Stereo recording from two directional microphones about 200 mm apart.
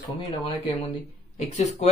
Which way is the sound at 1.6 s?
35° left (ahead or behind).